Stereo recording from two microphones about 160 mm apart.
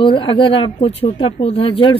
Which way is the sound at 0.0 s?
30° left (ahead or behind).